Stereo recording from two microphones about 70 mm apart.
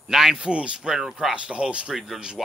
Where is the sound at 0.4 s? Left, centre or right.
Centre.